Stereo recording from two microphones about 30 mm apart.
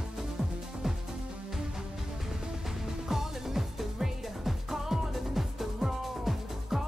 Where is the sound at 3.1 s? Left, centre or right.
Centre.